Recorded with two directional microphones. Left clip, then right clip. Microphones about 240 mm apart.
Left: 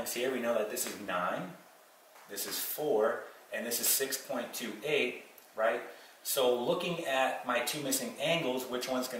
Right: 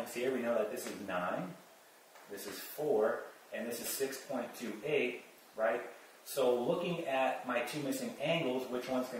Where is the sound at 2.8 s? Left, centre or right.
Right.